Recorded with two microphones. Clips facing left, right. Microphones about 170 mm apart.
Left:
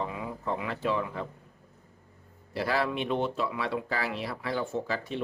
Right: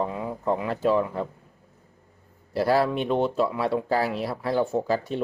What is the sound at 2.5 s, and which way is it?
Speech, 40° right (ahead or behind).